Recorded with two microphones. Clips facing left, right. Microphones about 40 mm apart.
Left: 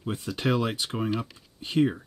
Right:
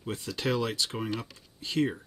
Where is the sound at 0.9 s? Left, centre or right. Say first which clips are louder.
Left 4 dB; centre.